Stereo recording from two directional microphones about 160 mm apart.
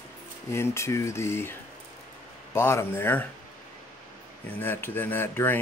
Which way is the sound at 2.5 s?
15° left (ahead or behind).